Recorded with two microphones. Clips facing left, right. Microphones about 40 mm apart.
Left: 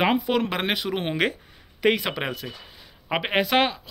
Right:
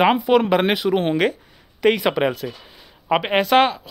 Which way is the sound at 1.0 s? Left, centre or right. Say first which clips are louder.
Right 5 dB; centre.